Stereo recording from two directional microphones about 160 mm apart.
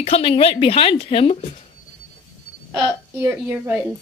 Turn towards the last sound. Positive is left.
turn(degrees=-10)  # may be behind; listen again after turning